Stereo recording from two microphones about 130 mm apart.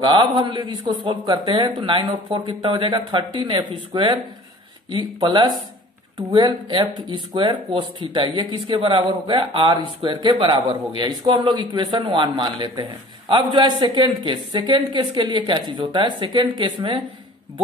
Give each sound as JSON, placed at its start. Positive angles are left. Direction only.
{"t": 0.0, "sound": "speech", "side_deg": -35}